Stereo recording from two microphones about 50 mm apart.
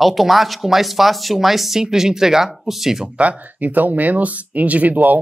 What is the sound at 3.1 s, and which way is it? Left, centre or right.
Speech, right.